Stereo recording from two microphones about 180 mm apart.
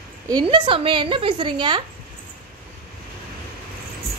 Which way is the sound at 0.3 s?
25° right (ahead or behind).